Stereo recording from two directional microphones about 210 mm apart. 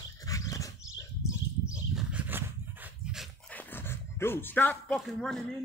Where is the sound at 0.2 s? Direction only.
15° left (ahead or behind).